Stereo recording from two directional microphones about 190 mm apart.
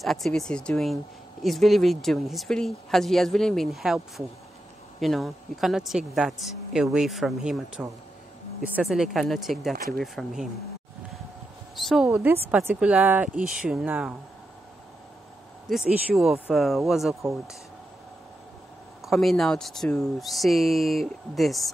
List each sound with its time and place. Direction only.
0.0 s speech: centre (ahead or behind)
5.0 s speech: centre (ahead or behind)
11.7 s a woman's voice: centre (ahead or behind)
15.7 s speech: 5° right (ahead or behind)
17.1 s speech: 15° right (ahead or behind)
19.0 s speech: centre (ahead or behind)